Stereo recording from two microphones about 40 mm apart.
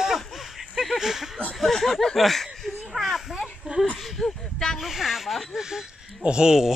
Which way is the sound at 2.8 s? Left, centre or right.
Centre.